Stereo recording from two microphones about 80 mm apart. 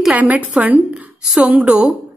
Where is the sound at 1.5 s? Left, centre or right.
Centre.